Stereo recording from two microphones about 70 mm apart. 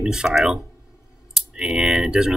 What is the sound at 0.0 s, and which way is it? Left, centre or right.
Speech, centre.